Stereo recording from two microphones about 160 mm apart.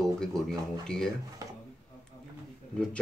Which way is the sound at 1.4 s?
20° right (ahead or behind).